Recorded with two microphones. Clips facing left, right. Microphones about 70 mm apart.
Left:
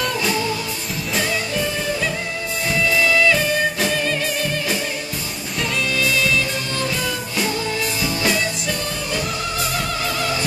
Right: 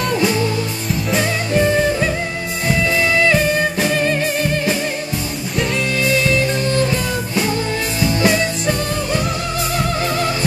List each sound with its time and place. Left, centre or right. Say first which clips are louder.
2.9 s music: right 1 dB; right
8.1 s music: right 7 dB; right